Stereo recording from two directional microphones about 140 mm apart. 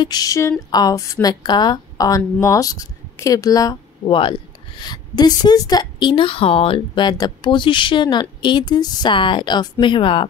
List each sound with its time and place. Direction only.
0.0 s a woman's voice: 30° left (ahead or behind)
4.1 s a woman's voice: 40° left (ahead or behind)